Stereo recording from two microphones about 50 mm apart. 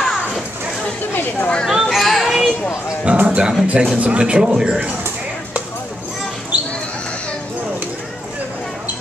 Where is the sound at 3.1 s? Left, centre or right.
Right.